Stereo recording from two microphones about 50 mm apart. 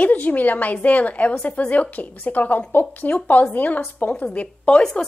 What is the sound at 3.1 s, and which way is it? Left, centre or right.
Speech, left.